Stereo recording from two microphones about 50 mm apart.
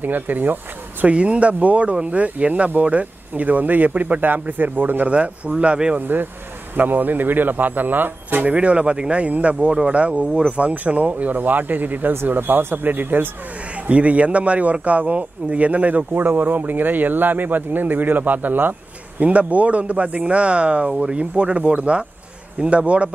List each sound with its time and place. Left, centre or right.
0.0 s speech: right
1.0 s speech: right
5.1 s speech: right
5.9 s speech: right
10.7 s speech: right
13.8 s speech: right
19.2 s speech: right